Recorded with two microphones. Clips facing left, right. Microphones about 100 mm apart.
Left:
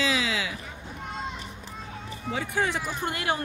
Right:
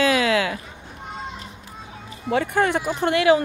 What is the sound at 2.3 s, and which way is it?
Speech, 60° right (ahead or behind).